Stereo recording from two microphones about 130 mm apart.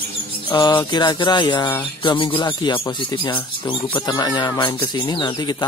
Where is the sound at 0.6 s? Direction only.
35° left (ahead or behind).